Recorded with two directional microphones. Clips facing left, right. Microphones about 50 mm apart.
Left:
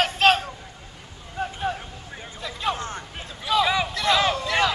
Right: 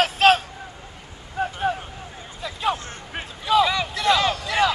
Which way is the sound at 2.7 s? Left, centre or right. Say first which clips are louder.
Left 1 dB; left.